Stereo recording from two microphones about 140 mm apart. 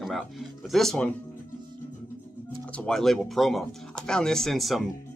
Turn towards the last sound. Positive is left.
turn(degrees=0)  # may be behind; listen again after turning